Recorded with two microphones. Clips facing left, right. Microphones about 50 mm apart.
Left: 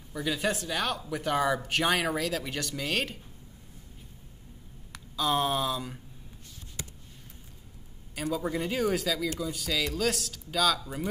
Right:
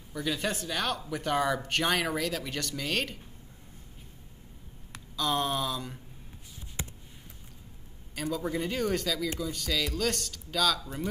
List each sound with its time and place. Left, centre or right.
0.1 s speech: centre
5.1 s speech: centre
6.8 s a sound: right
8.1 s speech: centre